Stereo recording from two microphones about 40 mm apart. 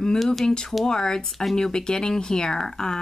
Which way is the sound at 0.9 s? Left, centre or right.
Centre.